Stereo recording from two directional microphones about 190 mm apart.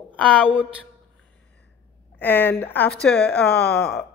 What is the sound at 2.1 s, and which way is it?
A woman's voice, 10° left (ahead or behind).